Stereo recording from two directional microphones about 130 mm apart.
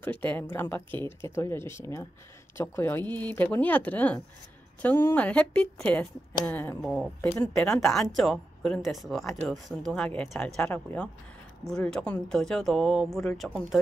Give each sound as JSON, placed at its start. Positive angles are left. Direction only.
{"t": 0.0, "sound": "speech", "side_deg": 15}
{"t": 6.8, "sound": "speech", "side_deg": -5}
{"t": 7.2, "sound": "speech", "side_deg": 20}
{"t": 7.5, "sound": "speech", "side_deg": 5}